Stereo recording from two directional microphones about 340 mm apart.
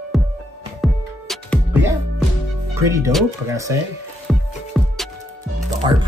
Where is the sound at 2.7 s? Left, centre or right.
Centre.